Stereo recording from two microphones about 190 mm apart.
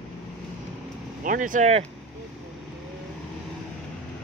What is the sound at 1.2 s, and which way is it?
Speech, 45° right (ahead or behind).